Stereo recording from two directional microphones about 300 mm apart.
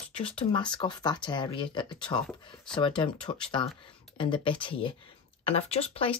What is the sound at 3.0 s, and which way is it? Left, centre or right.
Speech, centre.